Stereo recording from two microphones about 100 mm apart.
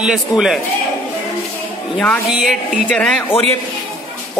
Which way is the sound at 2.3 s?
5° right (ahead or behind).